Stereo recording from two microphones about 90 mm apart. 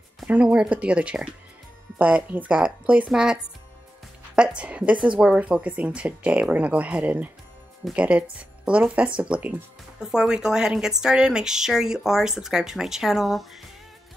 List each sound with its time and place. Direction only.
0.3 s speech: 10° right (ahead or behind)
4.4 s speech: 15° right (ahead or behind)